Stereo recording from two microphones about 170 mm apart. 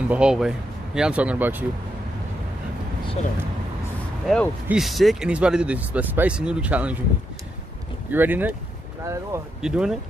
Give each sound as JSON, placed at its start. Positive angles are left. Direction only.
{"t": 0.1, "sound": "speech", "side_deg": -5}
{"t": 4.3, "sound": "speech", "side_deg": 0}
{"t": 8.1, "sound": "speech", "side_deg": -10}
{"t": 9.6, "sound": "speech", "side_deg": -5}